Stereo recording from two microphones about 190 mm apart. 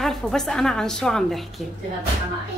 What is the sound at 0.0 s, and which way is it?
A woman's voice, centre (ahead or behind).